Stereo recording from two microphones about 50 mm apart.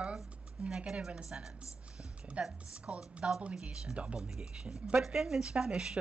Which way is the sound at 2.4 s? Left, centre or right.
Right.